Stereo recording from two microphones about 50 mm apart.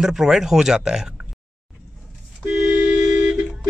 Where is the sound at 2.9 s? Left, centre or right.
Right.